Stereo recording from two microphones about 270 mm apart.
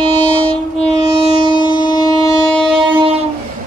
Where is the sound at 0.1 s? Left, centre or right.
Centre.